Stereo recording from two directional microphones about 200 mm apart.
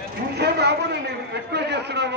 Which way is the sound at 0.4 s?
55° right (ahead or behind).